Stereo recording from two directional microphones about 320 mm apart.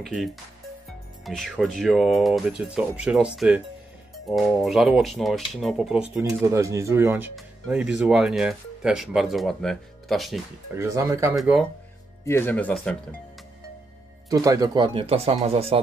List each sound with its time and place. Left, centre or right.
0.0 s speech: centre
14.3 s speech: centre